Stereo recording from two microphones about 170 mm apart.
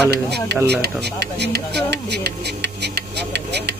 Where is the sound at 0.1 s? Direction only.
75° right (ahead or behind).